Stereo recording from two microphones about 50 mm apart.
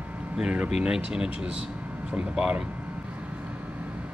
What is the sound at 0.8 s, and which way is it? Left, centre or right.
Speech, centre.